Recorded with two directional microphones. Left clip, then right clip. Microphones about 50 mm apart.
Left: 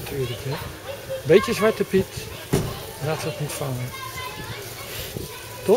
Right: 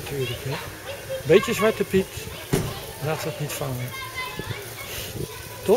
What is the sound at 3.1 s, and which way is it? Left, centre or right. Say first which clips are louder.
Speech: left 1 dB; centre.